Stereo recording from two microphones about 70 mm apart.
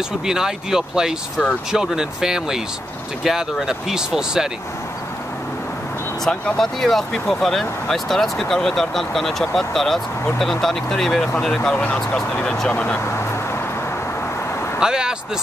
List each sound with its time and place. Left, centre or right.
0.3 s speech: centre
6.4 s speech: centre
11.7 s speech: left
14.8 s speech: centre